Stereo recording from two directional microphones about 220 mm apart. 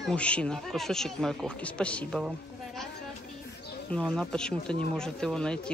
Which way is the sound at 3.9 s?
5° left (ahead or behind).